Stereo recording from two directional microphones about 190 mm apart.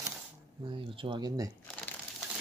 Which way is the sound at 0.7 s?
25° right (ahead or behind).